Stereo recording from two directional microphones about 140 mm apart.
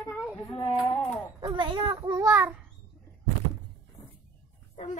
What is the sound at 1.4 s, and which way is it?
Speech, 35° right (ahead or behind).